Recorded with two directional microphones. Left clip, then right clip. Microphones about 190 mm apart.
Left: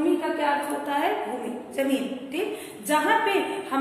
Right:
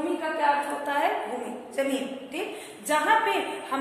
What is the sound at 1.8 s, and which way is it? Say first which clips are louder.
A woman's voice: left 2 dB; 10° right (ahead or behind).